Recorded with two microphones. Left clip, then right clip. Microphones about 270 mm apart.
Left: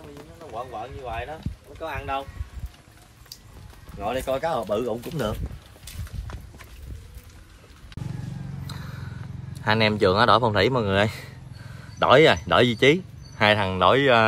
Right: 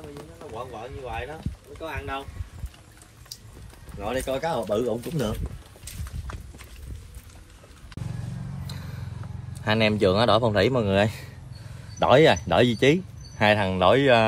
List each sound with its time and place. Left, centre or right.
0.7 s speech: centre
4.0 s speech: centre
9.7 s speech: left